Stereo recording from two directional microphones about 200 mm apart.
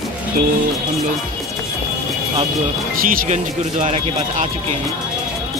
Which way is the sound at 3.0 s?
45° right (ahead or behind).